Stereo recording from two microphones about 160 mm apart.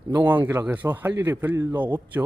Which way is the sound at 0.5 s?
15° right (ahead or behind).